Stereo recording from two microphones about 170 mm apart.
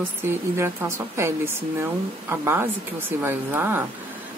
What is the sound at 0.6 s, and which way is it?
Speech, 15° right (ahead or behind).